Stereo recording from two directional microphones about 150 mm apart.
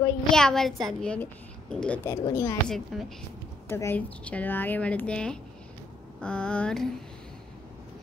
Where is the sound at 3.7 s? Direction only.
15° left (ahead or behind).